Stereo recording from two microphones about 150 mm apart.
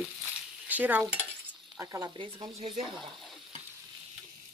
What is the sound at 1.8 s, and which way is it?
Speech, 25° right (ahead or behind).